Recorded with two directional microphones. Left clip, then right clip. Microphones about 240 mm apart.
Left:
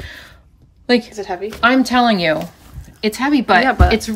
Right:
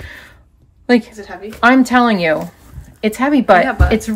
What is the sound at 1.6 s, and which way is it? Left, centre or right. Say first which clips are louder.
Speech: right 3 dB; centre.